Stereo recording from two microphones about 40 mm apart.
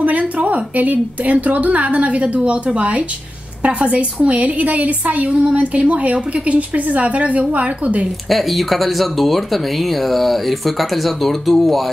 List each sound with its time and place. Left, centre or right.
0.0 s a woman's voice: right
8.3 s speech: centre